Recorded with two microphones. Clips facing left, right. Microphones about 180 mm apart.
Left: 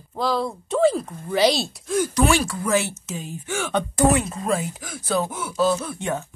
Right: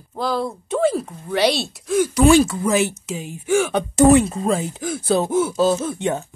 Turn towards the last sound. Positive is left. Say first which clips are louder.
# right 4 dB
turn(degrees=-20)  # may be behind; listen again after turning